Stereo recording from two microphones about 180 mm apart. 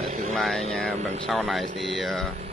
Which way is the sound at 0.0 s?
40° right (ahead or behind).